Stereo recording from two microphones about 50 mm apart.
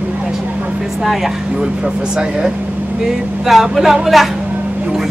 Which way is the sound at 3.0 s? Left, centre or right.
Centre.